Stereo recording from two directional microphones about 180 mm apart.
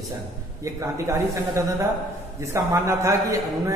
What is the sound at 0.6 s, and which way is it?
A woman's voice, 15° right (ahead or behind).